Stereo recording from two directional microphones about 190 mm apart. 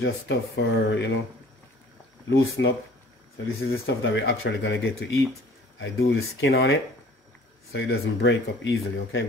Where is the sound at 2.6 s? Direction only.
80° left.